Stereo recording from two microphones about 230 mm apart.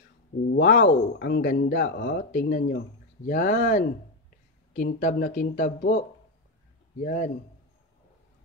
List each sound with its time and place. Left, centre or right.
0.6 s speech: left